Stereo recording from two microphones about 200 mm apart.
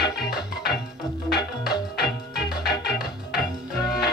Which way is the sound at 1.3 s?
55° left (ahead or behind).